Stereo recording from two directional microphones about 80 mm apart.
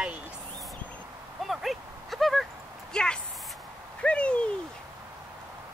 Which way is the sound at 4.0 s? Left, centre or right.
Centre.